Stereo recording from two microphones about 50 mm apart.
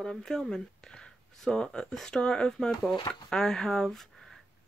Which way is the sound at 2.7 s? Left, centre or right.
Centre.